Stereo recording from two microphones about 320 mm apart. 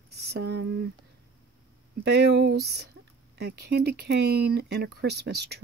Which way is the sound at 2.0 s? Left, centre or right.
Right.